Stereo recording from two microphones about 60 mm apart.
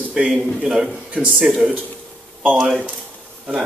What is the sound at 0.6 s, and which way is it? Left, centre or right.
Speech, centre.